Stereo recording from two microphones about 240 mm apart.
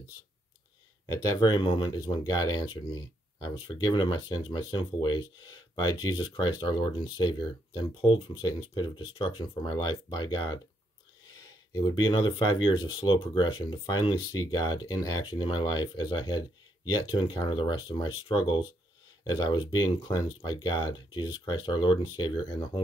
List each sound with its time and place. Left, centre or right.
1.0 s speech: centre
11.7 s speech: centre